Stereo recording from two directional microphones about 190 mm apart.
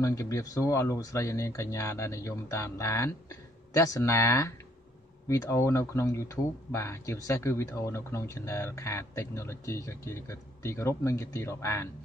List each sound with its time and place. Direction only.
0.0 s speech: 15° left (ahead or behind)